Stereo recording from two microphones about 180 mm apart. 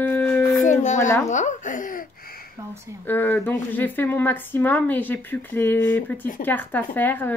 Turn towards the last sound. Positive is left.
turn(degrees=10)  # may be behind; listen again after turning